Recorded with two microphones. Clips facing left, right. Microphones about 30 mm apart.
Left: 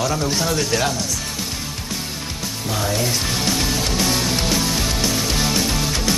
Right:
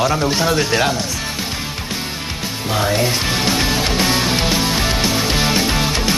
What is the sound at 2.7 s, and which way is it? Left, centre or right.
Music, right.